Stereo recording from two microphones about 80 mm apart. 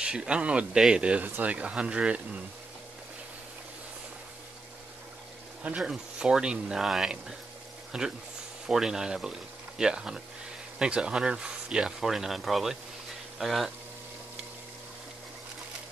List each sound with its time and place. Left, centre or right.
0.0 s speech: centre
5.6 s speech: centre